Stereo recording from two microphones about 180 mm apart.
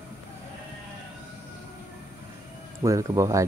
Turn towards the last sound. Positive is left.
turn(degrees=-15)  # may be behind; listen again after turning